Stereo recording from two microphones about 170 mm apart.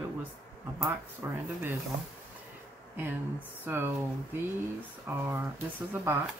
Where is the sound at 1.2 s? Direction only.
15° right (ahead or behind).